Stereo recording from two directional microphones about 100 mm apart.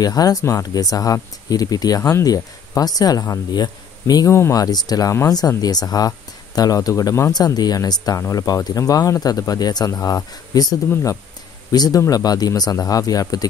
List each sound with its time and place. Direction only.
0.0 s speech: 40° left (ahead or behind)
4.3 s speech: 25° left (ahead or behind)
4.6 s speech: 40° left (ahead or behind)
10.9 s speech: 25° left (ahead or behind)
11.7 s speech: 40° left (ahead or behind)